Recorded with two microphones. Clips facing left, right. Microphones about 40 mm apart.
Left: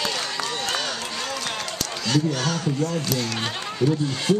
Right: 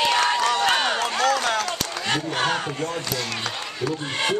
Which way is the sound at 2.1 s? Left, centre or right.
Right.